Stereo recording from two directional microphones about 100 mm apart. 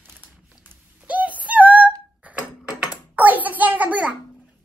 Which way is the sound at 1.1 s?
15° right (ahead or behind).